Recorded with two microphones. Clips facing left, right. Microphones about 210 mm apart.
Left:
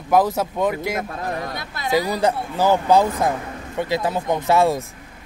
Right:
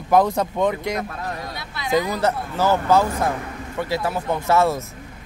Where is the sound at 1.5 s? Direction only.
45° left (ahead or behind).